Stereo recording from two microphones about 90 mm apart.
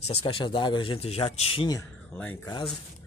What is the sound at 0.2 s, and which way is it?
Speech, 80° left.